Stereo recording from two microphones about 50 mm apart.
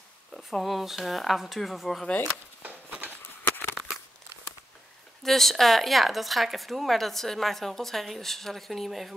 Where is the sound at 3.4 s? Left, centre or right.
Left.